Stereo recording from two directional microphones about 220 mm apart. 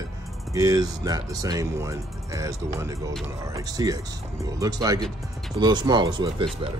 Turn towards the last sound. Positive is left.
turn(degrees=-20)  # may be behind; listen again after turning